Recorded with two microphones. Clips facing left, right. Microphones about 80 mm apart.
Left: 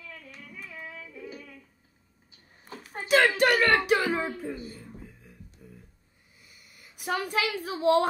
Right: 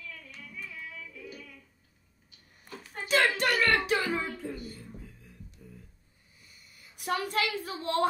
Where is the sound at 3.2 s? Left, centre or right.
Left.